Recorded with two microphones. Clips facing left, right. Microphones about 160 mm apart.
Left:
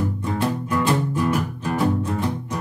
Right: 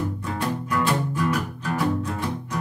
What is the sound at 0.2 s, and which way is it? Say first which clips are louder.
Music: left 4 dB; 25° left (ahead or behind).